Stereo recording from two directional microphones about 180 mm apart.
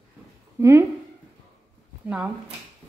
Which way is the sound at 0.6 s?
15° right (ahead or behind).